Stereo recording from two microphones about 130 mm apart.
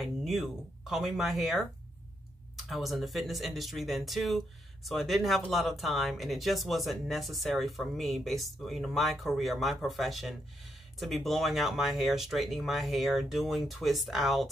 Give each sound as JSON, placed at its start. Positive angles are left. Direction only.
{"t": 0.0, "sound": "speech", "side_deg": 0}
{"t": 2.7, "sound": "speech", "side_deg": 0}